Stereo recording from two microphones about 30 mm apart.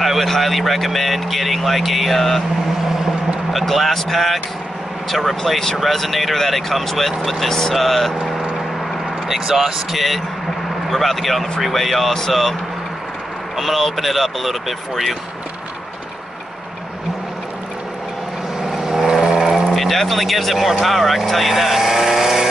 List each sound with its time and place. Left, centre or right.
0.0 s speech: centre
3.6 s speech: centre
9.3 s speech: centre
13.6 s speech: centre
18.7 s vehicle: centre
19.7 s speech: centre